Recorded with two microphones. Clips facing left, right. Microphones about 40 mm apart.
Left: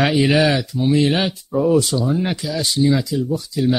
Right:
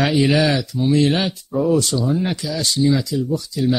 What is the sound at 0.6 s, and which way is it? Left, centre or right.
Speech, centre.